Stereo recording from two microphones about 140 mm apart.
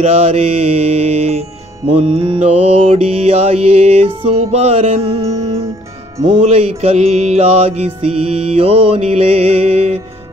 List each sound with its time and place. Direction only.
0.0 s mantra: 50° right (ahead or behind)
6.4 s mantra: 45° right (ahead or behind)